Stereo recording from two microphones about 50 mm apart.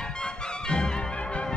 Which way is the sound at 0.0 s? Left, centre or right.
Centre.